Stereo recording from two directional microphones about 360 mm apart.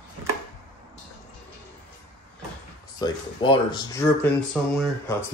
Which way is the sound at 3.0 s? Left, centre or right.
Centre.